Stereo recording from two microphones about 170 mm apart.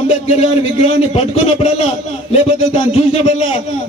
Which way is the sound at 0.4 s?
40° left (ahead or behind).